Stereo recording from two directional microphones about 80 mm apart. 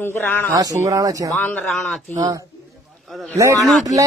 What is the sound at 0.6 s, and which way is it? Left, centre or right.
Speech, right.